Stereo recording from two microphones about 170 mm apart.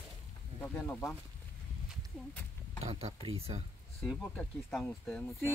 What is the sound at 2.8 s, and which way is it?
Speech, 35° right (ahead or behind).